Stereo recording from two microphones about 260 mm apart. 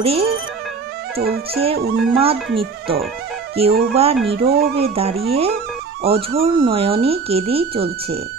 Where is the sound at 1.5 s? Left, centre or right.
Right.